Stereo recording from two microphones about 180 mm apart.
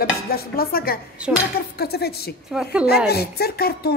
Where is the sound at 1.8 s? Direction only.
60° left (ahead or behind).